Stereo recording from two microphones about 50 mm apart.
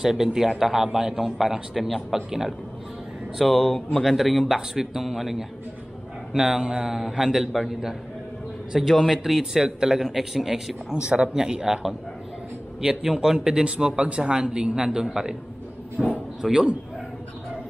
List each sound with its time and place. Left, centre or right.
0.0 s a man's voice: centre
9.2 s a man's voice: centre
16.4 s a man's voice: centre